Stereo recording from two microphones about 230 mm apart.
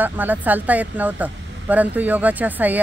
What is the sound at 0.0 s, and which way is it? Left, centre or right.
Speech, centre.